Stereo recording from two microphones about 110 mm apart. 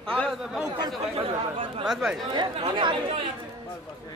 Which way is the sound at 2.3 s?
45° right (ahead or behind).